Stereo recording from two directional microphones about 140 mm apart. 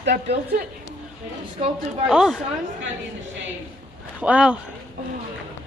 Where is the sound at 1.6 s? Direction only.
45° right (ahead or behind).